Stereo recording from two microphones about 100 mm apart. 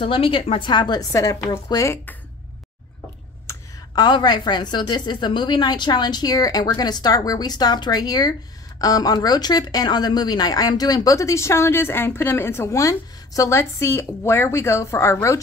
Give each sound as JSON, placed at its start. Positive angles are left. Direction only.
{"t": 0.0, "sound": "a woman's voice", "side_deg": 65}
{"t": 3.5, "sound": "a sound", "side_deg": 25}
{"t": 3.9, "sound": "a woman's voice", "side_deg": 45}